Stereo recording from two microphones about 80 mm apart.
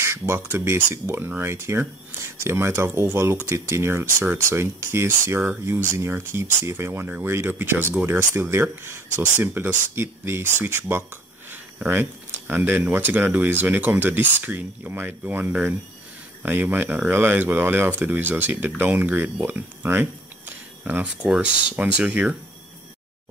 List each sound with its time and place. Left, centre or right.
0.0 s speech: right
19.4 s a sound: right
21.2 s speech: centre